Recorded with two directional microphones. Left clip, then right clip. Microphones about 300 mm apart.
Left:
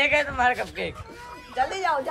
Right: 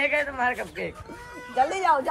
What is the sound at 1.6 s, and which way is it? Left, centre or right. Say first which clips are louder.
Speech: right 3 dB; right.